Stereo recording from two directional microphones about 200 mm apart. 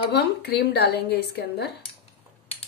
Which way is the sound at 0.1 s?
55° left (ahead or behind).